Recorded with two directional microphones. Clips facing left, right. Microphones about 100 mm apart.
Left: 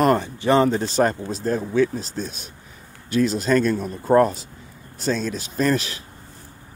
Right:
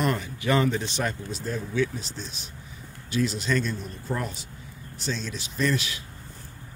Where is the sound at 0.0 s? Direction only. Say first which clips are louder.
Left 8 dB; 35° left (ahead or behind).